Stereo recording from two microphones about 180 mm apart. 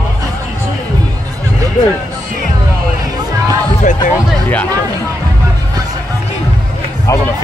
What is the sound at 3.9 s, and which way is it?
Music, 45° left (ahead or behind).